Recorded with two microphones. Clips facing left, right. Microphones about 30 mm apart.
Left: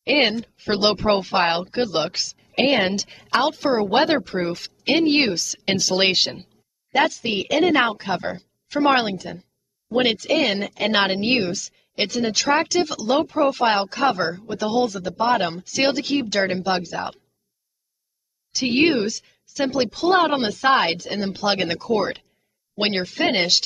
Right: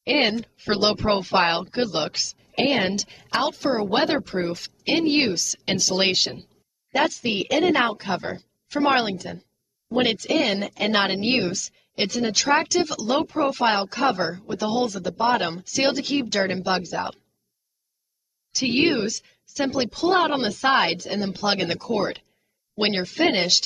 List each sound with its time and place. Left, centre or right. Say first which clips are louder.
0.0 s a woman's voice: left 2 dB; centre
2.6 s speech: left 3 dB; left
2.9 s a woman's voice: left 4 dB; centre
11.1 s a woman's voice: left 2 dB; centre
15.6 s a woman's voice: left 2 dB; centre
18.7 s a woman's voice: left 3 dB; centre